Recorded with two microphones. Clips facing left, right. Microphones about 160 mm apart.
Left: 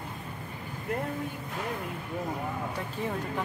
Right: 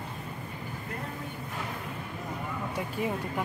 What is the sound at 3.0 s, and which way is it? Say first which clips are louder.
Speech: right 1 dB; 10° right (ahead or behind).